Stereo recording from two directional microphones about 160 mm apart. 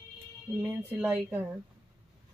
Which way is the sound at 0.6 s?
10° right (ahead or behind).